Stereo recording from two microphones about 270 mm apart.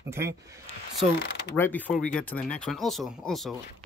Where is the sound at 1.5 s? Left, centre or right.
Centre.